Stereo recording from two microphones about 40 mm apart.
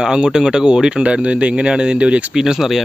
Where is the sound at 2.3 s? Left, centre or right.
Centre.